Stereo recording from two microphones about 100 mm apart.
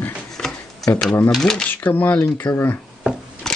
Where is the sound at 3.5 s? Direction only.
5° left (ahead or behind).